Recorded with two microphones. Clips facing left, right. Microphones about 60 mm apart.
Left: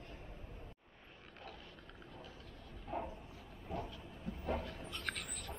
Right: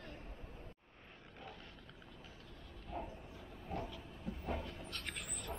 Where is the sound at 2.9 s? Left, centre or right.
Left.